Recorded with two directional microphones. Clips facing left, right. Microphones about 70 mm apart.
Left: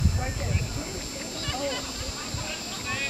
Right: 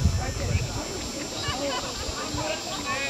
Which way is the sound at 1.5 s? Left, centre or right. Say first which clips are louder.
Right 1 dB; right.